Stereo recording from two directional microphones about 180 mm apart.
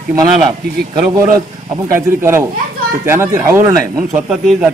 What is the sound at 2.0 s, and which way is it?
Speech, 15° right (ahead or behind).